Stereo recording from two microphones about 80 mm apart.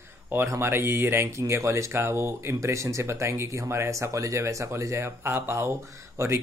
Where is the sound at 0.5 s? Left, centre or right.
Right.